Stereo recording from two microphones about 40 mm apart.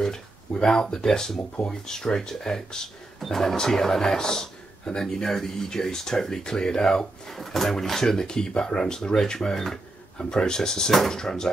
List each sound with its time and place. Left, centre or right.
0.0 s speech: centre